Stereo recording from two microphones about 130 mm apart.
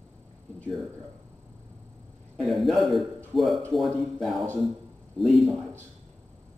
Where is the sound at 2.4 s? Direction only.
Centre (ahead or behind).